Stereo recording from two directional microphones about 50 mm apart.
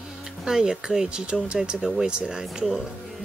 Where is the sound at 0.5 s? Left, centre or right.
Centre.